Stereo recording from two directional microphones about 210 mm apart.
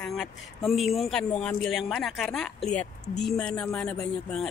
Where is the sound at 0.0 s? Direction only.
Centre (ahead or behind).